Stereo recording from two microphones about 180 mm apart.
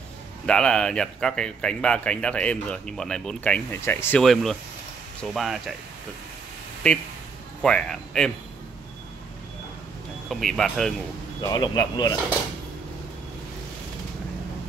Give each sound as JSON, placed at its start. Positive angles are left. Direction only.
{"t": 0.5, "sound": "speech", "side_deg": 5}
{"t": 4.2, "sound": "speech", "side_deg": 0}
{"t": 6.8, "sound": "speech", "side_deg": 5}
{"t": 10.3, "sound": "speech", "side_deg": 0}
{"t": 11.4, "sound": "a man's voice", "side_deg": 20}